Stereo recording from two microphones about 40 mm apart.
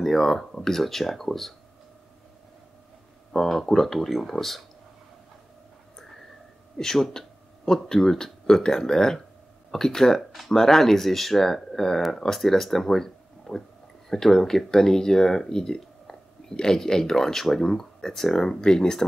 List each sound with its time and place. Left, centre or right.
0.0 s speech: centre
3.3 s speech: centre
5.9 s a sound: centre
6.8 s speech: centre